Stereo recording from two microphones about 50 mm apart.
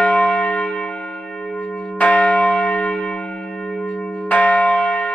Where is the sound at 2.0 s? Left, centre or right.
Left.